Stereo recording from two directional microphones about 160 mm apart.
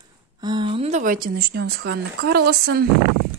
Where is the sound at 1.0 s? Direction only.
60° right (ahead or behind); by 2.9 s 75° right (ahead or behind).